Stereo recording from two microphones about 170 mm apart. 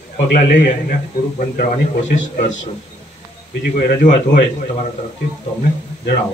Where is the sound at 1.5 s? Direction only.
50° left (ahead or behind).